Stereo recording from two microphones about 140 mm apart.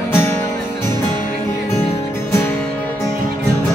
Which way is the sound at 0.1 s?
20° left (ahead or behind).